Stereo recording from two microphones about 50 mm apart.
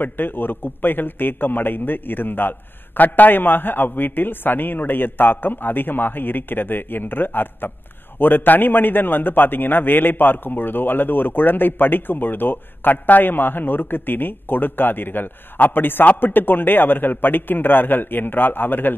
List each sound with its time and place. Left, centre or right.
0.0 s a man's voice: left